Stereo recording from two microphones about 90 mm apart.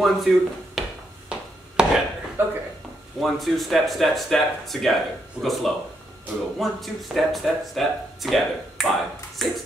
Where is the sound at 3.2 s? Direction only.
Centre (ahead or behind).